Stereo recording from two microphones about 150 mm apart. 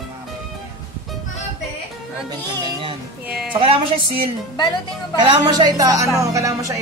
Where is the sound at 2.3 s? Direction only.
35° right (ahead or behind).